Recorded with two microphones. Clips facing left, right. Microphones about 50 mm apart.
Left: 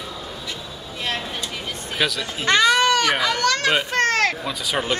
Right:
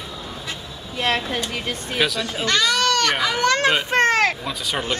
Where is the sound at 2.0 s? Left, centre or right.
Centre.